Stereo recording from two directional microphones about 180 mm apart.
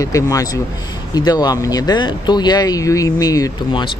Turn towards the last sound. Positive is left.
turn(degrees=20)  # may be behind; listen again after turning